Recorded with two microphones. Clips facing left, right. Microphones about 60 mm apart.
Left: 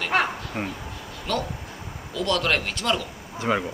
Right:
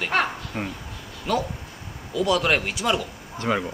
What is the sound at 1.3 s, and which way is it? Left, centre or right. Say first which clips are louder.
Speech: right 3 dB; centre.